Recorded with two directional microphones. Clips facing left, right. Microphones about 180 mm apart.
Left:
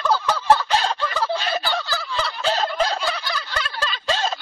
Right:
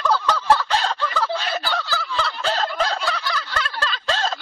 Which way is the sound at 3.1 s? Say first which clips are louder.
Right 1 dB; 15° left (ahead or behind).